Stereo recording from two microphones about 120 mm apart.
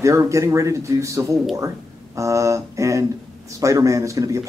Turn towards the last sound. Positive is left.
turn(degrees=-25)  # may be behind; listen again after turning